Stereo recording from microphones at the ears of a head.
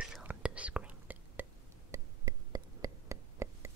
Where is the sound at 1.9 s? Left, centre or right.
Right.